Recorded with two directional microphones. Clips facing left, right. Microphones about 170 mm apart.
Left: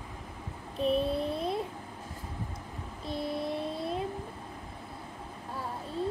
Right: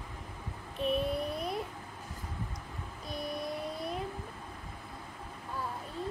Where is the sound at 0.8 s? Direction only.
30° left (ahead or behind).